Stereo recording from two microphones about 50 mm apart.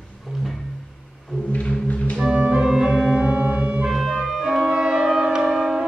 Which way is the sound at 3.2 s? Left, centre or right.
Right.